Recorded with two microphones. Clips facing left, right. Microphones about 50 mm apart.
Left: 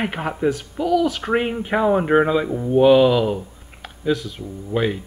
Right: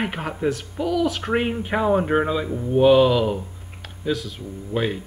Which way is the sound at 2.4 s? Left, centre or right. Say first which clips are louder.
Left 3 dB; left.